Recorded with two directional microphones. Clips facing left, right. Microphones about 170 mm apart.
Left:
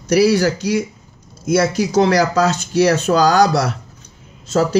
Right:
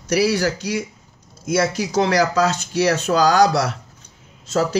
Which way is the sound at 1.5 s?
35° left (ahead or behind).